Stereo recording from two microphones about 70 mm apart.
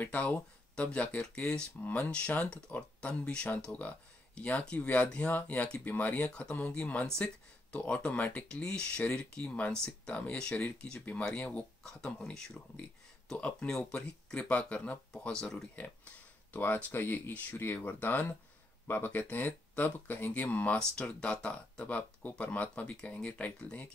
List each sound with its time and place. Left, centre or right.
0.0 s speech: left
11.8 s speech: centre
16.5 s speech: left